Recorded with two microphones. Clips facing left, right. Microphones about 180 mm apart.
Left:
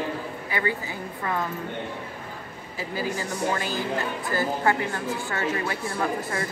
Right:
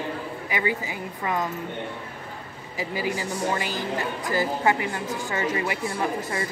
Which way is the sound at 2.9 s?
10° right (ahead or behind).